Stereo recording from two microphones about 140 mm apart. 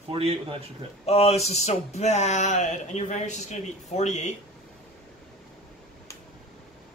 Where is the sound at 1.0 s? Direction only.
50° left (ahead or behind).